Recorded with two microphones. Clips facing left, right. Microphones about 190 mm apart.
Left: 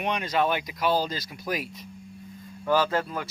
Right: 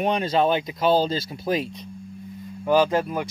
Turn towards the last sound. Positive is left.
turn(degrees=-20)  # may be behind; listen again after turning